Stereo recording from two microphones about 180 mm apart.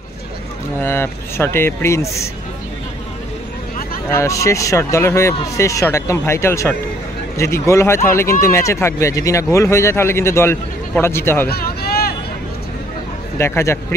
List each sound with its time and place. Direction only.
0.8 s speech: 15° left (ahead or behind)
4.1 s speech: 15° left (ahead or behind)
11.4 s a sound: 60° left (ahead or behind)
13.4 s speech: 15° left (ahead or behind)